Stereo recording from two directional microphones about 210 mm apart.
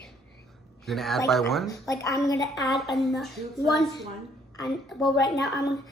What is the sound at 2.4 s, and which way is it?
A woman's voice, centre (ahead or behind).